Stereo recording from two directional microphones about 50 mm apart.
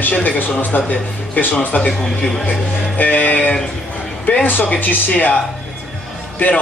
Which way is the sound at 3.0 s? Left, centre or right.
Left.